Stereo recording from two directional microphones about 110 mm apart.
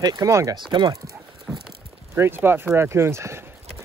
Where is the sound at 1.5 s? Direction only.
Centre (ahead or behind).